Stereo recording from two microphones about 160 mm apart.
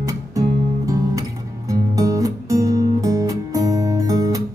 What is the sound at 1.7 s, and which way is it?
Music, 20° right (ahead or behind).